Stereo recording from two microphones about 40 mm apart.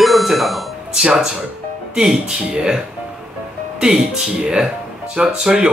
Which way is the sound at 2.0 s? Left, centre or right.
Centre.